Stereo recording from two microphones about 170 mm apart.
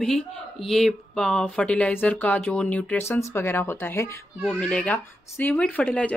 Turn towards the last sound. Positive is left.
turn(degrees=10)  # may be behind; listen again after turning